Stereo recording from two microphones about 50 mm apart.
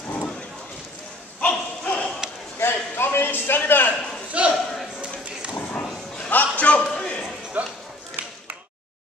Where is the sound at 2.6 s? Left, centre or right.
Left.